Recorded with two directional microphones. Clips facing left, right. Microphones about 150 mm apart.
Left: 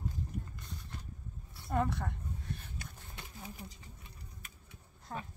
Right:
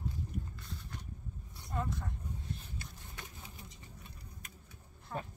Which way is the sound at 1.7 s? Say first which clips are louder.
Left 5 dB; 70° left (ahead or behind).